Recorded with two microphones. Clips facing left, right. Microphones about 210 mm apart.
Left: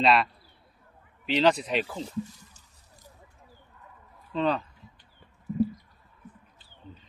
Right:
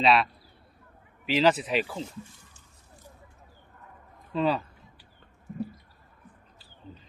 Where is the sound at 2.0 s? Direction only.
40° left (ahead or behind).